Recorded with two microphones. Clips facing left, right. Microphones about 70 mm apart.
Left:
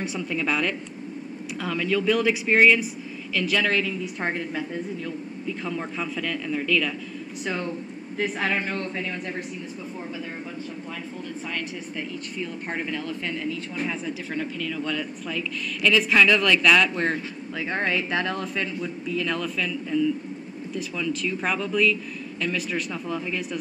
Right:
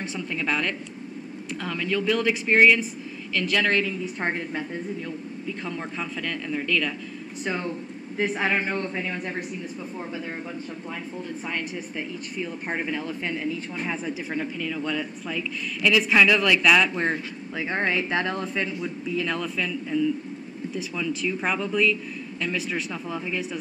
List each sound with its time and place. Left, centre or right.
0.3 s speech: centre
8.4 s speech: centre
12.4 s speech: centre